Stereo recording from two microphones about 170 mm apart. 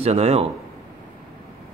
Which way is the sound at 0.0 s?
35° right (ahead or behind).